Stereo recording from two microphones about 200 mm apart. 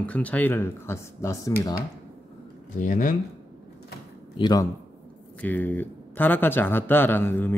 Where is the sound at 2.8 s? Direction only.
40° left (ahead or behind).